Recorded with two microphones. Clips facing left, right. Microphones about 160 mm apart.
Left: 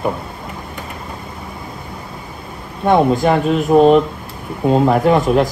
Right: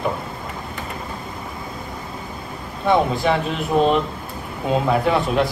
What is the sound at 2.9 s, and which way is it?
Speech, 45° left (ahead or behind).